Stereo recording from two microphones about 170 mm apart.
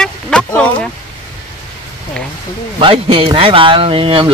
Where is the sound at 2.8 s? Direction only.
30° right (ahead or behind).